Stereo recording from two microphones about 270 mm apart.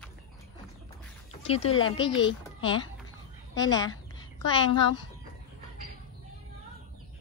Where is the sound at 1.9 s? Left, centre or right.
Centre.